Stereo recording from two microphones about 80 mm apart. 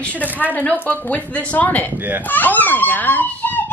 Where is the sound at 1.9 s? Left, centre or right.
Right.